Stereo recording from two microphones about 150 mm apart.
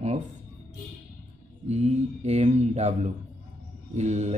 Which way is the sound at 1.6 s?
50° right (ahead or behind).